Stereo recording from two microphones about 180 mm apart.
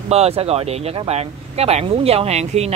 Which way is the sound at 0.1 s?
35° right (ahead or behind).